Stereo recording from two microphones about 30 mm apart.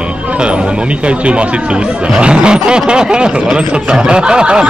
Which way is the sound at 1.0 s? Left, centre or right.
Right.